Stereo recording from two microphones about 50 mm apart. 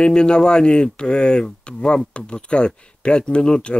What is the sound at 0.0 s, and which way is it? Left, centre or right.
Speech, centre.